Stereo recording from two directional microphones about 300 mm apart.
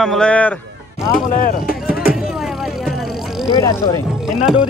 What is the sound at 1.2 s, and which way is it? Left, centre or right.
Speech, left.